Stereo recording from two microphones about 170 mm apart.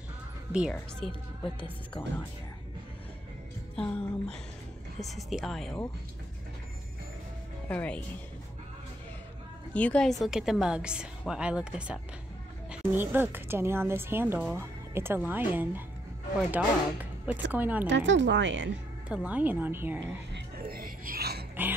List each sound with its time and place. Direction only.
0.5 s a woman's voice: 5° right (ahead or behind)
2.0 s speech: 30° left (ahead or behind)
3.7 s a woman's voice: 5° left (ahead or behind)
7.6 s speech: 10° left (ahead or behind)
9.8 s a woman's voice: 5° left (ahead or behind); by 17.8 s 10° right (ahead or behind)
17.8 s speech: 90° right
19.0 s a woman's voice: 5° right (ahead or behind)
20.3 s a sound: 65° right (ahead or behind)